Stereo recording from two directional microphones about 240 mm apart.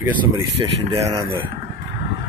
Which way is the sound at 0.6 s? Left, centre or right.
Right.